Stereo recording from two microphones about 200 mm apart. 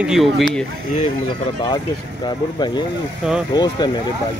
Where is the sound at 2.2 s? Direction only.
20° left (ahead or behind).